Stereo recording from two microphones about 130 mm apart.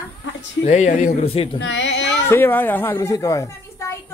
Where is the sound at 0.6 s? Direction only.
65° left (ahead or behind).